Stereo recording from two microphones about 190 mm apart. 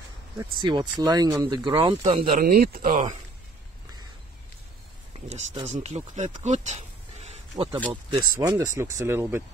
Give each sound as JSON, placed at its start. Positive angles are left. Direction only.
{"t": 0.4, "sound": "speech", "side_deg": -25}
{"t": 2.3, "sound": "speech", "side_deg": -50}
{"t": 5.3, "sound": "speech", "side_deg": -35}